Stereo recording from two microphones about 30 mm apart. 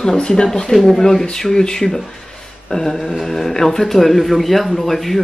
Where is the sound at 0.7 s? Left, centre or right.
Centre.